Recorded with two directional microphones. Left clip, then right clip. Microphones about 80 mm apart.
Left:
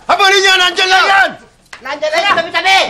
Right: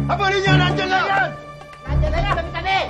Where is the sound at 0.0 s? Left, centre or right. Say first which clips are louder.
Left 10 dB; left.